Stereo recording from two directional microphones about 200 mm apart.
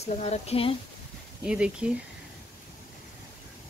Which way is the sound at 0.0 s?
30° left (ahead or behind).